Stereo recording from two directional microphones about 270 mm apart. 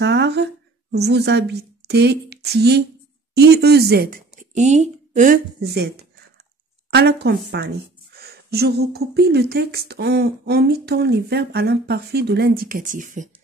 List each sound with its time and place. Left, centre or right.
0.0 s a sound: right
0.9 s a woman's voice: right
6.9 s speech: right